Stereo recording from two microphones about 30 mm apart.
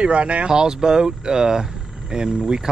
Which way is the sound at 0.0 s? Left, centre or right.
Right.